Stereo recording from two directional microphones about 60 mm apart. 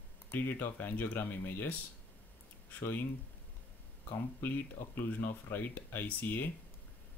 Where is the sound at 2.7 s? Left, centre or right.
Left.